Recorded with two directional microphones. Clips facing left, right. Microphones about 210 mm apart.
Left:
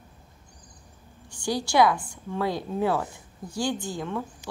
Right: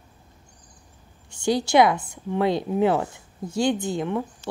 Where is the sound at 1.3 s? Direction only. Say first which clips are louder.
Right 5 dB; 20° right (ahead or behind).